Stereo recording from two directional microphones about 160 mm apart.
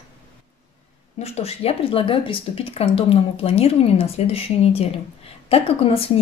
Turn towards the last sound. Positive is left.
turn(degrees=35)  # may be behind; listen again after turning